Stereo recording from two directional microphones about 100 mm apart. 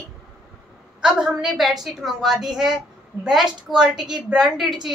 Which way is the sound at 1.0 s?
5° right (ahead or behind).